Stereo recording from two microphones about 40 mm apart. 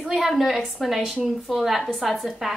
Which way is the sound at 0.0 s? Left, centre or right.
Centre.